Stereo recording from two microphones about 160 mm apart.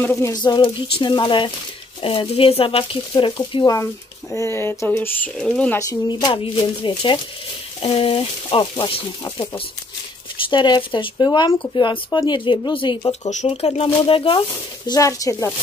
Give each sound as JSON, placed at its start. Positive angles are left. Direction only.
{"t": 0.0, "sound": "speech", "side_deg": 15}
{"t": 5.8, "sound": "speech", "side_deg": 20}
{"t": 10.4, "sound": "speech", "side_deg": 30}
{"t": 13.3, "sound": "speech", "side_deg": 45}
{"t": 14.9, "sound": "speech", "side_deg": 20}